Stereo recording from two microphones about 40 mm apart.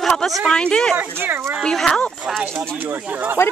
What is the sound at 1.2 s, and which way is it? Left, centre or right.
Speech, right.